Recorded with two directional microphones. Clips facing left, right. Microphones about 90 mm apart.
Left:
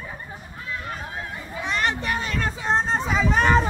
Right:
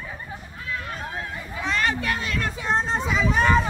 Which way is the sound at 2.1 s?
30° left (ahead or behind).